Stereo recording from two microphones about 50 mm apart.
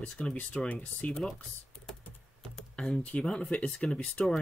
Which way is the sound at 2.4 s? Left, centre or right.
Centre.